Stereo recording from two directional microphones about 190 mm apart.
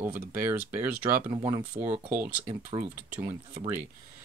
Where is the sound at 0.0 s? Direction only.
10° right (ahead or behind).